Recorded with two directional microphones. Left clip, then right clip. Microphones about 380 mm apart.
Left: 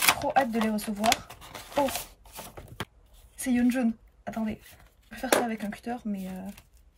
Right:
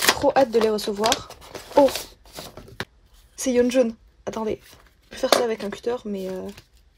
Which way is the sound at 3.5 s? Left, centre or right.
Centre.